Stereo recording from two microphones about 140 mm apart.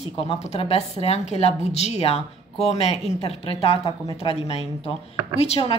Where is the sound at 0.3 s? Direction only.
45° left (ahead or behind).